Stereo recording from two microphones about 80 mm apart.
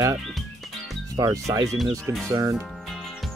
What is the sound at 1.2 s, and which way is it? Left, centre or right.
Speech, right.